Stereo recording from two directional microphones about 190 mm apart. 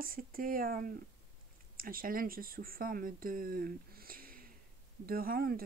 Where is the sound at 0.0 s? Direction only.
50° right (ahead or behind).